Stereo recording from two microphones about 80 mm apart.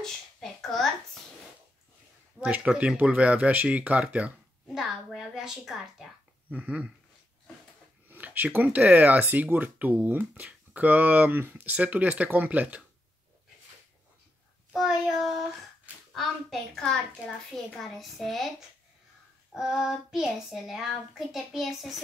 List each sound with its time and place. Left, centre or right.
0.0 s a sound: centre
2.4 s speech: centre
4.7 s a woman's voice: centre
6.5 s speech: centre
8.1 s speech: right
14.7 s child singing: centre
16.1 s a child's voice: centre
19.5 s a child's voice: centre